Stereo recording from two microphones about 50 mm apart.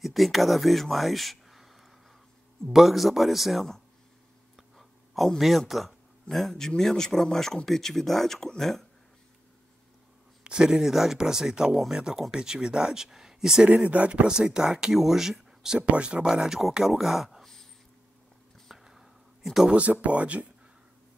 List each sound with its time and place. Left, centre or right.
0.0 s speech: centre
4.7 s a sound: centre
5.4 s speech: centre
10.4 s speech: centre
13.8 s speech: right; by 15.8 s centre
15.8 s speech: right
16.3 s speech: centre
18.9 s a sound: centre
19.7 s speech: right